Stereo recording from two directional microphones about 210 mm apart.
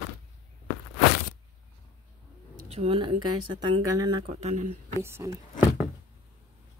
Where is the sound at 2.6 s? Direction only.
30° right (ahead or behind); by 5.9 s 10° right (ahead or behind).